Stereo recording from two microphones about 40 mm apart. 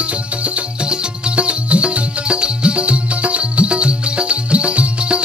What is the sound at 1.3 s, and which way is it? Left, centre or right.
Music, right.